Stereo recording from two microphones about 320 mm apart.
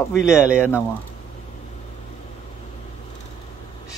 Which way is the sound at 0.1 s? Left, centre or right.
Centre.